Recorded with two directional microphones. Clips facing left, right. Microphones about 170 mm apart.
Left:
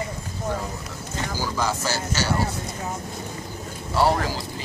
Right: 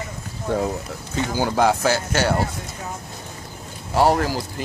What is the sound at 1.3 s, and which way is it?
Speech, 60° right (ahead or behind).